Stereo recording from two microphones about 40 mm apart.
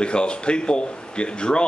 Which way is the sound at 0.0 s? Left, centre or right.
Left.